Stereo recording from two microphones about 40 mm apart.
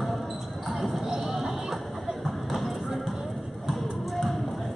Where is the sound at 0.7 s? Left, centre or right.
Centre.